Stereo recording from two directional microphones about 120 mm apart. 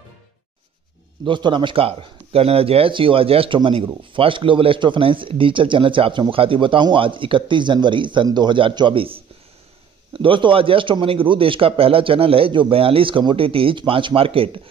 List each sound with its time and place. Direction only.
1.2 s speech: 40° right (ahead or behind)